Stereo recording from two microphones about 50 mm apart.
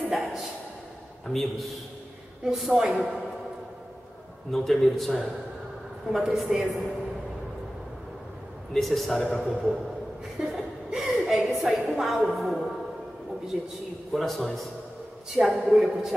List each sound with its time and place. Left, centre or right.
0.1 s a sound: centre
1.2 s a man's voice: centre
4.5 s a man's voice: centre
8.7 s a man's voice: centre
10.4 s chuckle: centre
13.5 s a man's voice: centre
14.1 s a man's voice: centre